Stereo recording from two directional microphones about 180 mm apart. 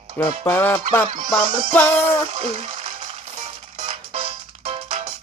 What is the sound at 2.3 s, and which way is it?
Music, 35° right (ahead or behind).